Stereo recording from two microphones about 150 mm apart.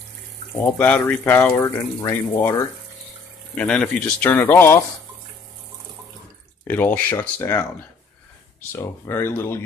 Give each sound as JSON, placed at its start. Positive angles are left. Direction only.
{"t": 0.6, "sound": "speech", "side_deg": 10}
{"t": 3.5, "sound": "speech", "side_deg": 5}
{"t": 6.7, "sound": "speech", "side_deg": 10}